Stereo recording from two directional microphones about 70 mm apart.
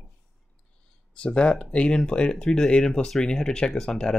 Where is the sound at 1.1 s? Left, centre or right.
Centre.